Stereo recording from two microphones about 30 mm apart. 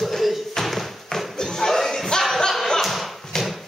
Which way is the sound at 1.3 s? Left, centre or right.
Centre.